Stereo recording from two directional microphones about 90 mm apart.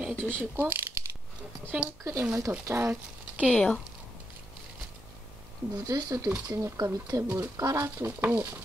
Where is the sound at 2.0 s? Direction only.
30° right (ahead or behind).